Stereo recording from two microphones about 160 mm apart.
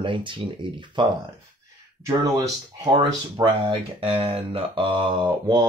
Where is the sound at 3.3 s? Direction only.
35° right (ahead or behind).